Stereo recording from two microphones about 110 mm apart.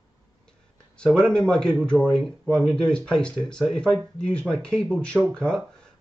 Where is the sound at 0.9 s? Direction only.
5° left (ahead or behind).